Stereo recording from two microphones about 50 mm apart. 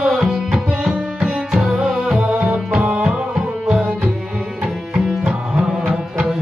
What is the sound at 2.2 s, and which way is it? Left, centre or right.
Music, right.